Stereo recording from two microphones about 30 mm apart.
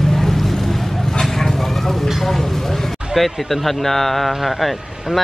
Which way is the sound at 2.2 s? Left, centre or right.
Centre.